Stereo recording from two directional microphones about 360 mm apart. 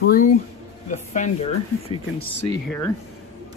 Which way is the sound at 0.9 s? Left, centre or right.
Centre.